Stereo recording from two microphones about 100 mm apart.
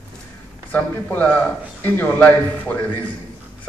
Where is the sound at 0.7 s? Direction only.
15° left (ahead or behind).